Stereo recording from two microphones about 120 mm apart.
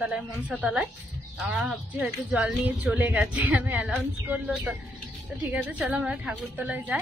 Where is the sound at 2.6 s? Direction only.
15° right (ahead or behind).